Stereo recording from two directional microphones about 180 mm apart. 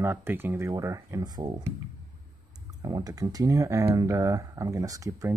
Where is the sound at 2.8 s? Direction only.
20° right (ahead or behind).